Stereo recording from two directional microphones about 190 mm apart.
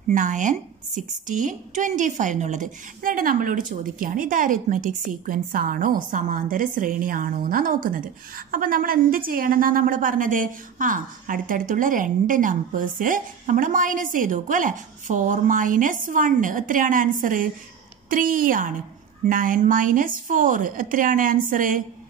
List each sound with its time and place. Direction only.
0.1 s a woman's voice: 40° right (ahead or behind)